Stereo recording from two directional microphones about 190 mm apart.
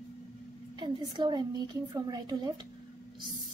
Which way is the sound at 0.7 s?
25° right (ahead or behind).